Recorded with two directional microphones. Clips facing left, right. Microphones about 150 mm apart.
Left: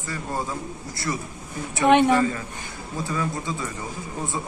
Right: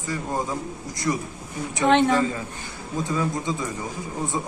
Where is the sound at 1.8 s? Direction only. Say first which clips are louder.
Left 2 dB; 15° left (ahead or behind).